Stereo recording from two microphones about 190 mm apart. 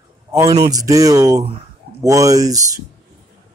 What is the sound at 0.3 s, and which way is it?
Speech, 15° right (ahead or behind).